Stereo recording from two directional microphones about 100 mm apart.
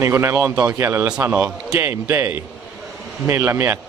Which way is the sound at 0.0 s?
25° right (ahead or behind).